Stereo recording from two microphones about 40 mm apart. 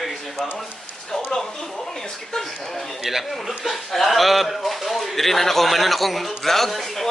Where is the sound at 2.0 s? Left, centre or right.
Centre.